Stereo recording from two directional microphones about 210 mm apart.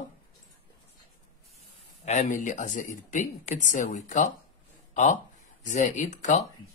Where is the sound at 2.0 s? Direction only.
35° left (ahead or behind).